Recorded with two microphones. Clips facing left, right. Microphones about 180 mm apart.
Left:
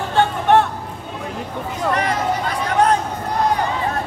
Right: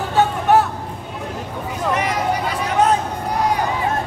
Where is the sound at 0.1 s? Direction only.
5° right (ahead or behind).